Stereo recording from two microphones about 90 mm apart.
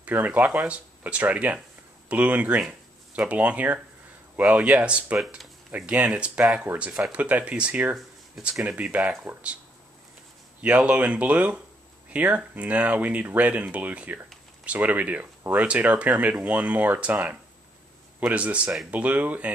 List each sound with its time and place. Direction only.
0.0 s speech: 20° right (ahead or behind)
6.9 s speech: 5° right (ahead or behind)
7.2 s speech: 15° right (ahead or behind)
10.6 s speech: 15° right (ahead or behind)